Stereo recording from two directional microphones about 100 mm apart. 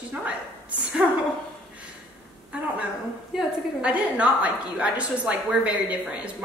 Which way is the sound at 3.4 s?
10° right (ahead or behind).